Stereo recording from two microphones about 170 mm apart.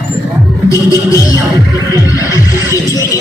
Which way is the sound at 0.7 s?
20° left (ahead or behind).